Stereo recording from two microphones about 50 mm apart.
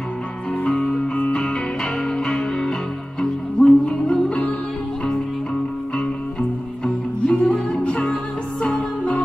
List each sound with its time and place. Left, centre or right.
0.7 s music: centre
6.8 s music: centre